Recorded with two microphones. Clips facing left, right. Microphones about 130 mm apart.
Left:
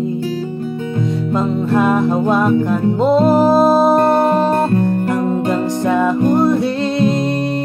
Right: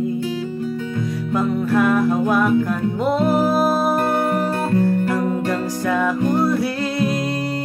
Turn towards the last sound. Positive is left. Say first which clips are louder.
# left 5 dB
turn(degrees=25)  # may be behind; listen again after turning